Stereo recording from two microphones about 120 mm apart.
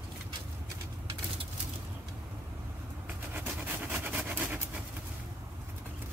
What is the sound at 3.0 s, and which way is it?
Vehicle, 15° right (ahead or behind).